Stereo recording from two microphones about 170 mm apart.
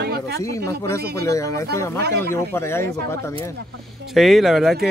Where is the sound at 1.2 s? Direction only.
20° left (ahead or behind).